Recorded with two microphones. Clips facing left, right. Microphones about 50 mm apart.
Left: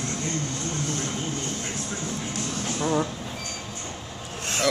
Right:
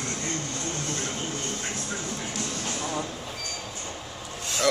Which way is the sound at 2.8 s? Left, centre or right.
Left.